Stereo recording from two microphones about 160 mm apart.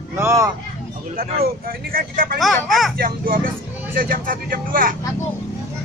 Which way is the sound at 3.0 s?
65° right (ahead or behind).